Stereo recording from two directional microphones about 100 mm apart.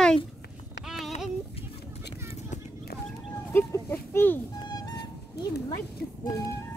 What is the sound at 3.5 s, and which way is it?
Speech, 25° left (ahead or behind).